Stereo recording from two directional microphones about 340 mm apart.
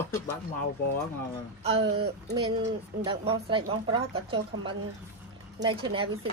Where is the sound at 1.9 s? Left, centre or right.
Centre.